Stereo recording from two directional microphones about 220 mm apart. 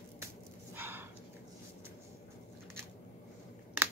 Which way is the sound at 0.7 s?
10° right (ahead or behind).